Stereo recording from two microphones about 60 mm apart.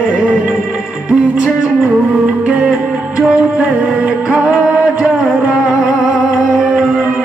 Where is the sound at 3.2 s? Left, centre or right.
Centre.